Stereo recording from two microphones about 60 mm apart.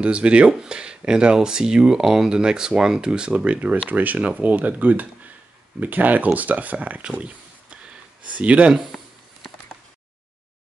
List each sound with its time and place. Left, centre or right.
0.0 s speech: centre
7.8 s gasp: right